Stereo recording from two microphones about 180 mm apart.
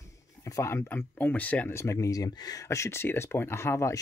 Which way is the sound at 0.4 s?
20° left (ahead or behind).